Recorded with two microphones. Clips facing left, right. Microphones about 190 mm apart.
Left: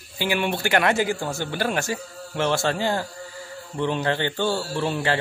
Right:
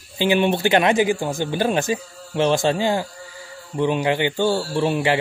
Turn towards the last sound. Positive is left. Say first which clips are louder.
# right 4 dB
turn(degrees=-15)  # may be behind; listen again after turning